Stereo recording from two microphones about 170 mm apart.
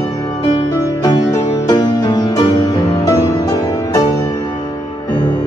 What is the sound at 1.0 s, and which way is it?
Music, 25° left (ahead or behind).